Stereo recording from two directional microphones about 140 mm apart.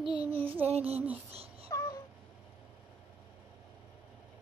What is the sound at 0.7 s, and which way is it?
Female singing, 45° right (ahead or behind).